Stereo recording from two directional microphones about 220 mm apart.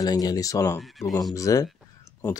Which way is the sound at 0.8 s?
Centre (ahead or behind).